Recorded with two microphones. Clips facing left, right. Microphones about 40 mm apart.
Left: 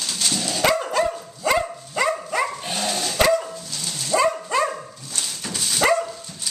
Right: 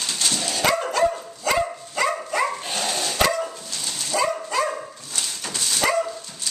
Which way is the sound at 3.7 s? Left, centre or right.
Centre.